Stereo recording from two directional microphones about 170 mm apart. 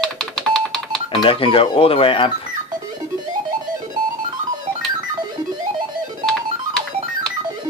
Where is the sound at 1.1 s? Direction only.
35° left (ahead or behind).